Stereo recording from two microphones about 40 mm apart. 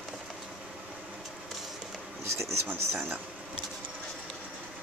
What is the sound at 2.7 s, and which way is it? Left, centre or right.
Speech, right.